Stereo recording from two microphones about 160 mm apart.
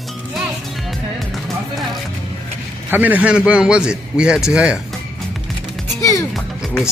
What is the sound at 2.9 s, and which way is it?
A man's voice, 10° right (ahead or behind).